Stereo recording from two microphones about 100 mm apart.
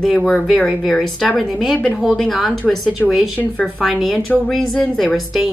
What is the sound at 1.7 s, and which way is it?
Speech, 15° left (ahead or behind).